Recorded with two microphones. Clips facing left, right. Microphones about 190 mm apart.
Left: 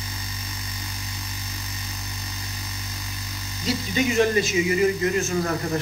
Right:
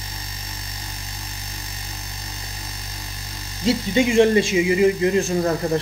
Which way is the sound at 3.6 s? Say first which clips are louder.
Right 5 dB; 25° right (ahead or behind).